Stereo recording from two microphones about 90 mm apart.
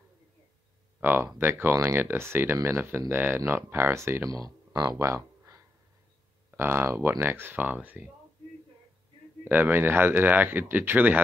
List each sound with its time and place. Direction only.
1.0 s speech: 25° right (ahead or behind)
4.3 s speech: 45° right (ahead or behind)
4.9 s a sound: 30° right (ahead or behind)
6.5 s speech: 25° right (ahead or behind)
9.4 s speech: 25° right (ahead or behind)